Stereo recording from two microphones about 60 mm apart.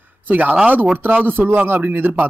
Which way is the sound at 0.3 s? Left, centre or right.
Right.